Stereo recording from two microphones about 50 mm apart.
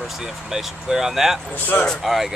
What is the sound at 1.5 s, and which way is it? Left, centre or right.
Speech, left.